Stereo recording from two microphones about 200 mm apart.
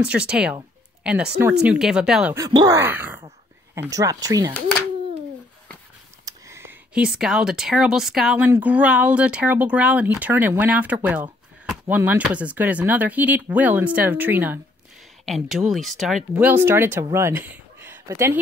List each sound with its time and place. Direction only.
0.0 s speech: 5° right (ahead or behind)
2.3 s speech: 20° right (ahead or behind)
6.2 s speech: 15° right (ahead or behind)